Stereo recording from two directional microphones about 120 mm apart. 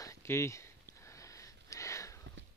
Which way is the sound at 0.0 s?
25° left (ahead or behind).